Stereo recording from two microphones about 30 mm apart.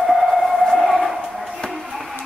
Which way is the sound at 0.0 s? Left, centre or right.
Centre.